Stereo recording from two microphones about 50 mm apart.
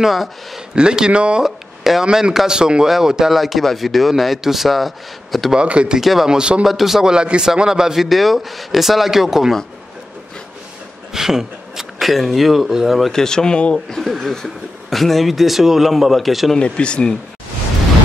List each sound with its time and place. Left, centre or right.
0.0 s speech: centre
0.7 s speech: centre
1.4 s speech: centre
2.0 s a man's voice: centre
5.5 s speech: right
5.9 s speech: centre
6.3 s a man's voice: centre
6.6 s a man's voice: centre
11.1 s speech: centre
13.2 s speech: centre
13.9 s speech: centre
16.5 s speech: left